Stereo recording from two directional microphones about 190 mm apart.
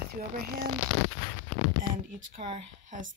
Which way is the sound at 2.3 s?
30° right (ahead or behind).